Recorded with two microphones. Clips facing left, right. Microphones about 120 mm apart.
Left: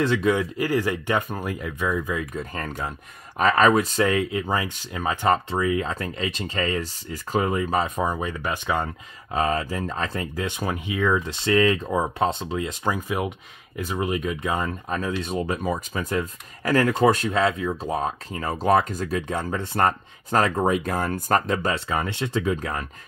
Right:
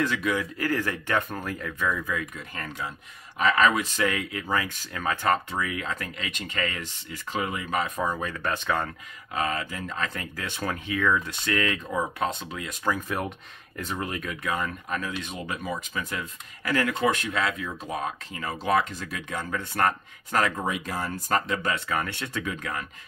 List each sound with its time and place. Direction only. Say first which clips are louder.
0.0 s speech: left 5 dB; 25° left (ahead or behind)
2.3 s speech: left 6 dB; 35° left (ahead or behind)
7.8 s speech: left 3 dB; 20° left (ahead or behind)
9.3 s speech: left 5 dB; 35° left (ahead or behind)
10.3 s speech: left 4 dB; 20° left (ahead or behind); by 21.7 s 45° left (ahead or behind)
21.7 s speech: left 3 dB; 25° left (ahead or behind)